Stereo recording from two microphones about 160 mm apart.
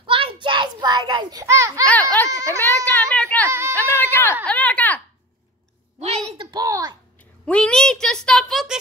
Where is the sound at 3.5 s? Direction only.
15° right (ahead or behind).